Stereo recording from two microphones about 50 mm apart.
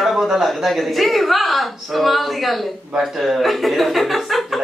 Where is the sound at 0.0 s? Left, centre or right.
Centre.